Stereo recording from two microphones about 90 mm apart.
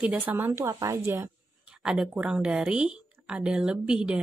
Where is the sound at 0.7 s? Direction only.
40° right (ahead or behind).